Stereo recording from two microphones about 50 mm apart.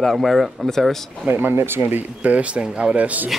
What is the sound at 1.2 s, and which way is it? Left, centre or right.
Speech, right.